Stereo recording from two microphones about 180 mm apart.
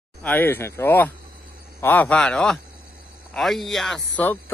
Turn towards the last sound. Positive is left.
turn(degrees=10)  # may be behind; listen again after turning